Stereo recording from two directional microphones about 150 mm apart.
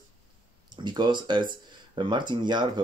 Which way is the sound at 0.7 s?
30° right (ahead or behind).